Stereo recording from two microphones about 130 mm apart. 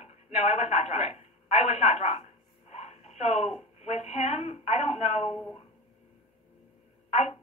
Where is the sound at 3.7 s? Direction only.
60° left (ahead or behind).